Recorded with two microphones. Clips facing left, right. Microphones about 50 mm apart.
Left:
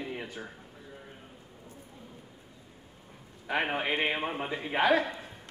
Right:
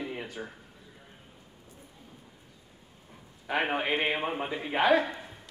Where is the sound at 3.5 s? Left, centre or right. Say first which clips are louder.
Right 1 dB; centre.